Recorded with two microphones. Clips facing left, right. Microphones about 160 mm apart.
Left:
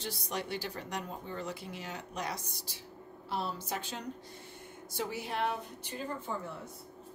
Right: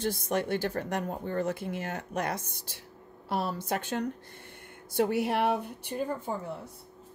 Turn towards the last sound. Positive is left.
turn(degrees=-30)  # may be behind; listen again after turning